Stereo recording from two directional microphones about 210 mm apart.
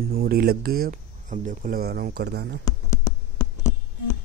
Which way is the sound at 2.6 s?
15° left (ahead or behind).